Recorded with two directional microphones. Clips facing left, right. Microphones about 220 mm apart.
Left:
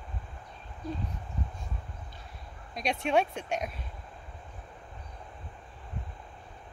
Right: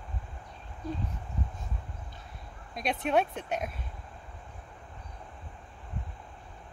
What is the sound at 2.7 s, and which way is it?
Speech, centre (ahead or behind).